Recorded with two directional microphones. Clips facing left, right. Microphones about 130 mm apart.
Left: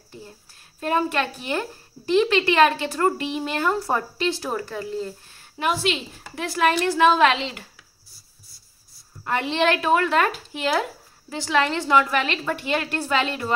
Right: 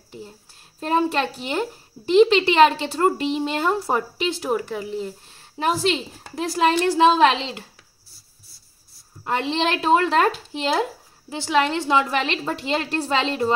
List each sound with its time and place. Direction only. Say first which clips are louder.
0.7 s speech: right 2 dB; 30° right (ahead or behind)
5.3 s speech: right 2 dB; 30° right (ahead or behind)
9.2 s speech: left 1 dB; 25° right (ahead or behind)